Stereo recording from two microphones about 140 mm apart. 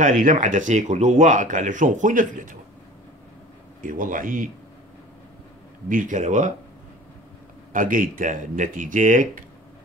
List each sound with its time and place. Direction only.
0.0 s speech: 65° right (ahead or behind)
3.8 s speech: 75° right (ahead or behind)
5.9 s speech: 70° right (ahead or behind)
7.7 s speech: 75° right (ahead or behind)